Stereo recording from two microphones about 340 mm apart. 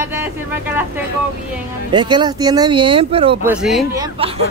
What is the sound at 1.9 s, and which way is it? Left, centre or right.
Speech, centre.